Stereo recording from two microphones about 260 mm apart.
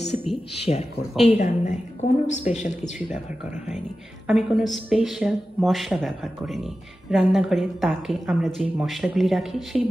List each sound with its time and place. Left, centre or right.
0.6 s a sound: left
1.4 s a woman's voice: left
4.3 s speech: centre